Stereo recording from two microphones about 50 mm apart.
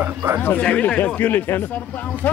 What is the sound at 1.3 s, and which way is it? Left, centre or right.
Speech, left.